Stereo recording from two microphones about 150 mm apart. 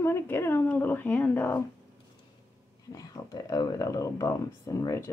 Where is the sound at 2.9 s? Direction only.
20° left (ahead or behind).